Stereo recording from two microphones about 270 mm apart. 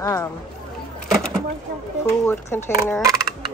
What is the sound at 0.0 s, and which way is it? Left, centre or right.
Speech, centre.